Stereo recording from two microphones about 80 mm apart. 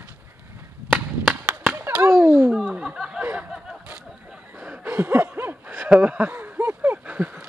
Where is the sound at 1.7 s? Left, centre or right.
Right.